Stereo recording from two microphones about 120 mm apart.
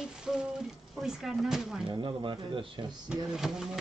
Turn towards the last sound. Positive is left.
turn(degrees=-5)  # may be behind; listen again after turning